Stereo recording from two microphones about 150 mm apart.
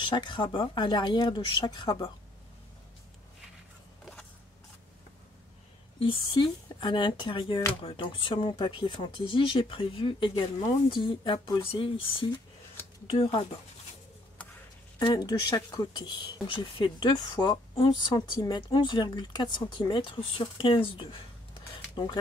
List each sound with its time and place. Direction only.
0.0 s speech: 30° left (ahead or behind)
4.0 s a sound: 5° left (ahead or behind)
5.9 s speech: 35° left (ahead or behind)
15.0 s speech: 25° left (ahead or behind)